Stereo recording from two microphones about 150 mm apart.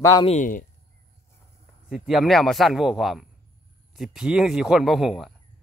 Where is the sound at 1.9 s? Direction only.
Centre (ahead or behind).